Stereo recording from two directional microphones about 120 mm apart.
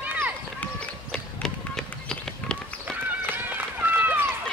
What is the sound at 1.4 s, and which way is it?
Run, 5° left (ahead or behind).